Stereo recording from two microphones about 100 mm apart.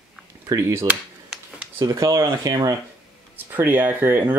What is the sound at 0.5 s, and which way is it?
Speech, 30° right (ahead or behind).